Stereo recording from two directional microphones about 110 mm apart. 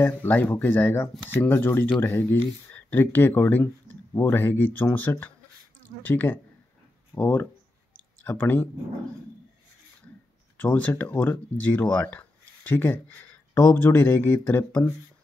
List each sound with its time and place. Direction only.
0.0 s speech: 15° left (ahead or behind)
7.9 s clicking: 15° left (ahead or behind)
10.6 s speech: 10° left (ahead or behind)